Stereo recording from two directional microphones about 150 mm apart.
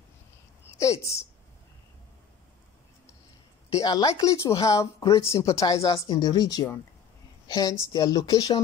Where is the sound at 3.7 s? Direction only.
25° left (ahead or behind).